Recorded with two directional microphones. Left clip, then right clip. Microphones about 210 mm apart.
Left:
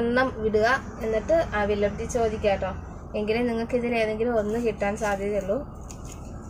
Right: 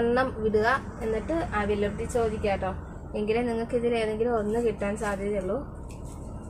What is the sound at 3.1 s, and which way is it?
Speech, 10° right (ahead or behind).